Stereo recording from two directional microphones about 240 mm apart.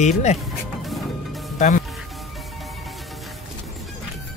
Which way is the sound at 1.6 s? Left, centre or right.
Left.